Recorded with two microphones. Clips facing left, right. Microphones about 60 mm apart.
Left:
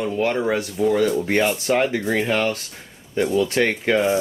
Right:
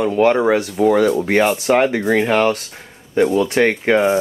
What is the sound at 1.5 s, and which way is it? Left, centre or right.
Speech, right.